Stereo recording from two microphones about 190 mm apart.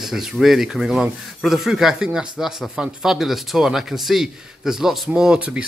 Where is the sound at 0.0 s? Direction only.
Centre (ahead or behind).